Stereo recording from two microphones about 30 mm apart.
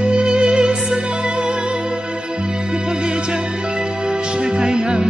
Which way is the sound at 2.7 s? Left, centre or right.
Right.